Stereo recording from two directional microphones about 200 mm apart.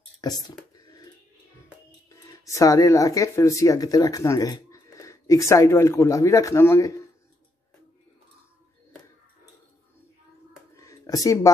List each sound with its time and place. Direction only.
0.2 s speech: 20° left (ahead or behind)
0.7 s music: 20° left (ahead or behind)
2.0 s speech: 15° left (ahead or behind)
10.8 s a sound: 15° left (ahead or behind)